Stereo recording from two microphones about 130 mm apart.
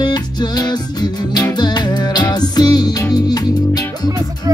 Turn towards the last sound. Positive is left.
turn(degrees=30)  # may be behind; listen again after turning